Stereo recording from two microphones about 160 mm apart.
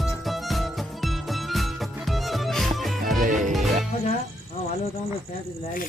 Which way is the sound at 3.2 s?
55° right (ahead or behind).